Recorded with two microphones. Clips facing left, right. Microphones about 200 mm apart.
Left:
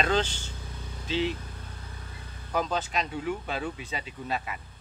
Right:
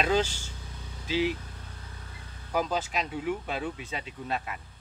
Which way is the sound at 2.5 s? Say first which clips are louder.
Even; 10° right (ahead or behind).